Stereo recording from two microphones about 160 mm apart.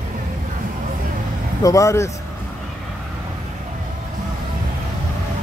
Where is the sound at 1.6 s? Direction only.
20° left (ahead or behind).